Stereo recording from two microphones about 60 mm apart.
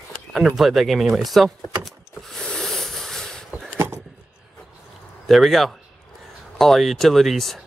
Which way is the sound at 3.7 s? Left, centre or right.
Right.